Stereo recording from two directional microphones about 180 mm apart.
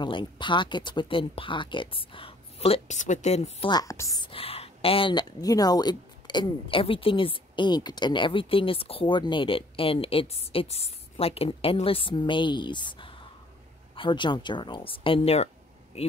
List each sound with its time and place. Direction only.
0.0 s speech: 25° left (ahead or behind)
3.7 s speech: 15° left (ahead or behind); by 16.1 s 35° left (ahead or behind)